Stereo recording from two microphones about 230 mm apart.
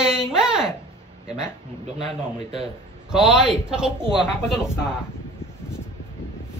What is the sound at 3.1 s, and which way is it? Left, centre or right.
A child's voice, centre.